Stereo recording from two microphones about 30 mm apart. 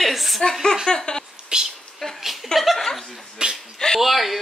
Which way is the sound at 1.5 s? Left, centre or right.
Right.